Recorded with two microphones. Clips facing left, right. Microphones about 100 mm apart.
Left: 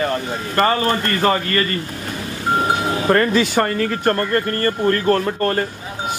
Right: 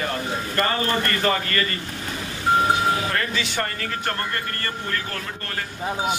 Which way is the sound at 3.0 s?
45° left (ahead or behind).